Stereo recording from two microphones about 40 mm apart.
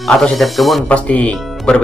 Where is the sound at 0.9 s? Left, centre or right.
Left.